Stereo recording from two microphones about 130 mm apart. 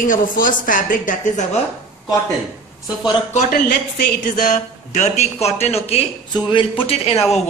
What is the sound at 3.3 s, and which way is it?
A woman's voice, 85° left.